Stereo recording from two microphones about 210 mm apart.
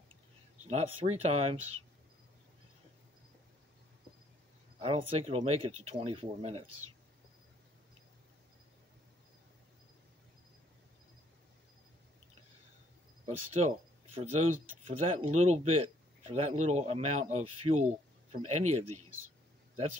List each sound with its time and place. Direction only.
0.7 s speech: 30° right (ahead or behind)
4.7 s speech: 30° right (ahead or behind)
13.2 s speech: 30° right (ahead or behind)